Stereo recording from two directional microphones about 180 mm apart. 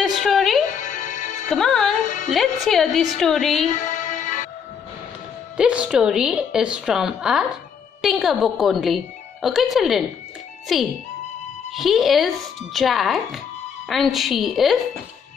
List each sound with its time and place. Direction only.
0.0 s music: centre (ahead or behind)
0.7 s music: 45° left (ahead or behind)
1.5 s music: centre (ahead or behind)
2.0 s music: 45° left (ahead or behind)
2.3 s a woman's voice: centre (ahead or behind)
3.8 s music: 45° left (ahead or behind)
5.6 s a woman's voice: 5° right (ahead or behind)